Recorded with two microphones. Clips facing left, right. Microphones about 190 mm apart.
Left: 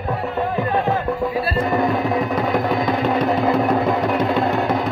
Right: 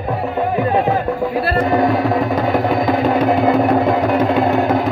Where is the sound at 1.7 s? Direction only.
Centre (ahead or behind).